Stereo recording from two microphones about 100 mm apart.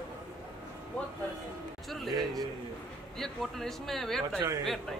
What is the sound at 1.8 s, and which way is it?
Music, centre (ahead or behind).